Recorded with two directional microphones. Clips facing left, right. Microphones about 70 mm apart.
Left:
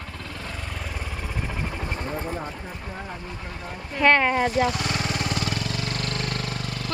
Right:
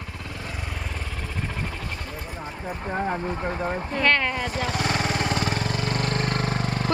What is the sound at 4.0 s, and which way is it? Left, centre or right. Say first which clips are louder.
Speech: left 5 dB; centre.